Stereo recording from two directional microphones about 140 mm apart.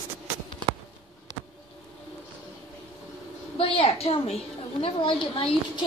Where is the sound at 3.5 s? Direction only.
40° left (ahead or behind).